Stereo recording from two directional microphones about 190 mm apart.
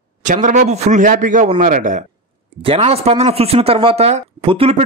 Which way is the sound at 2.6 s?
30° right (ahead or behind).